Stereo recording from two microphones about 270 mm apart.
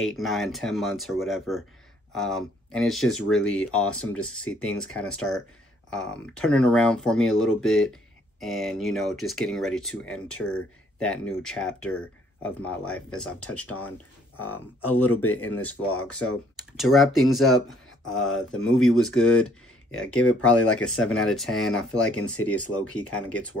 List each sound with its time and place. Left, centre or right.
0.2 s speech: centre
5.9 s speech: centre
14.8 s speech: centre
18.5 s speech: left
18.9 s speech: centre